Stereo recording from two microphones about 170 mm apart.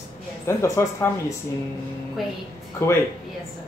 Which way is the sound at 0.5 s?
15° left (ahead or behind).